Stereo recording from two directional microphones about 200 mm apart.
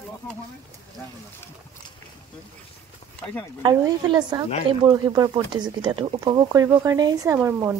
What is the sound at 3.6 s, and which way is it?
Speech, 20° right (ahead or behind).